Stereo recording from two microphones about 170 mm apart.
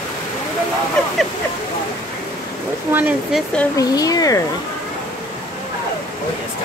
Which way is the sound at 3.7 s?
20° left (ahead or behind).